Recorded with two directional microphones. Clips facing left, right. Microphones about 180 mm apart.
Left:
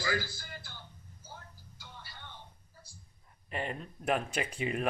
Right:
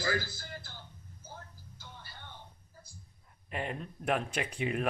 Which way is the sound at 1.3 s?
50° right (ahead or behind).